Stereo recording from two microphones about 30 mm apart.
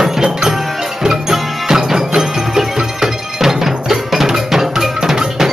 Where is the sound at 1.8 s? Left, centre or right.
Centre.